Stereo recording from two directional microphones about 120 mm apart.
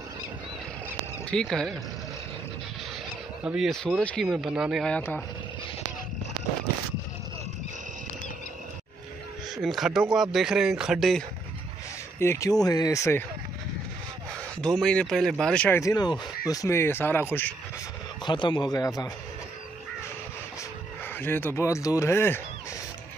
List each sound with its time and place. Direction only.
1.3 s speech: 5° left (ahead or behind)
3.4 s speech: 5° right (ahead or behind)
3.7 s speech: 5° left (ahead or behind)
4.3 s speech: 5° right (ahead or behind)
4.8 s speech: 15° left (ahead or behind)
9.6 s speech: centre (ahead or behind)
12.2 s speech: 25° left (ahead or behind)
14.6 s speech: 5° left (ahead or behind)
15.8 s speech: 35° left (ahead or behind); by 17.6 s 15° left (ahead or behind)
18.2 s speech: 40° left (ahead or behind)
21.2 s speech: 15° left (ahead or behind)